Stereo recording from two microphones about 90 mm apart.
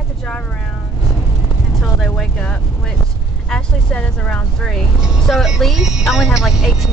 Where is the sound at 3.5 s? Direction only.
10° left (ahead or behind).